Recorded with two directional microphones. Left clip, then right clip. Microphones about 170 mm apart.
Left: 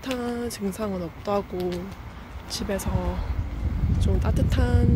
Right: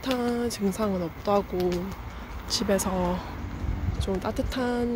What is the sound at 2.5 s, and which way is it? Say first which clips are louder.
Speech: right 4 dB; 20° right (ahead or behind).